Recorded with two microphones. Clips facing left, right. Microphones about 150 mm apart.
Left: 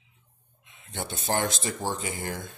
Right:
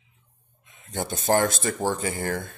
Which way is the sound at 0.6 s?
40° right (ahead or behind).